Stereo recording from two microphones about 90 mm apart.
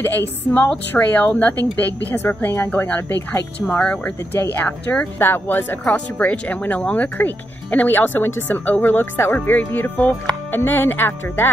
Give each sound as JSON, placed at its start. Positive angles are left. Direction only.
{"t": 0.0, "sound": "speech", "side_deg": 30}
{"t": 0.5, "sound": "a woman's voice", "side_deg": 10}